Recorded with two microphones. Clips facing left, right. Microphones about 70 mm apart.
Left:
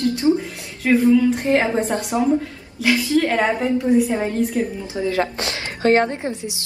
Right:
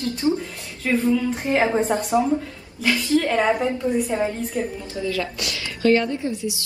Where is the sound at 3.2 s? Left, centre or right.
Centre.